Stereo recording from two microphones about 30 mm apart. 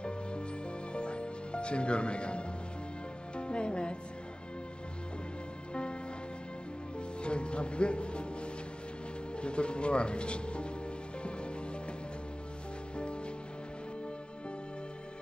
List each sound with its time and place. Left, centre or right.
0.9 s music: left
3.3 s speech: left
7.0 s music: left
9.4 s speech: left
12.9 s music: left